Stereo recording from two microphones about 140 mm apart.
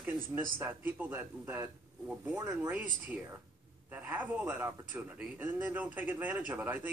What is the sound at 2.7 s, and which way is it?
Speech, 10° right (ahead or behind).